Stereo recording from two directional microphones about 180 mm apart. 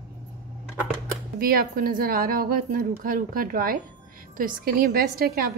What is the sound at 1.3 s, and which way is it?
A woman's voice, 55° right (ahead or behind).